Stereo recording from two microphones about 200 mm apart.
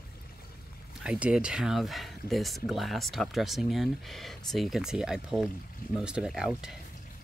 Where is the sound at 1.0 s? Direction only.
5° right (ahead or behind).